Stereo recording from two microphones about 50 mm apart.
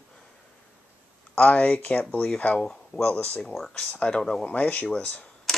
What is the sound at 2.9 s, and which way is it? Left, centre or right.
Speech, left.